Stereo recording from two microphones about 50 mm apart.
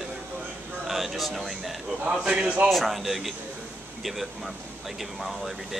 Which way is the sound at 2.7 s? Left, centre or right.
Centre.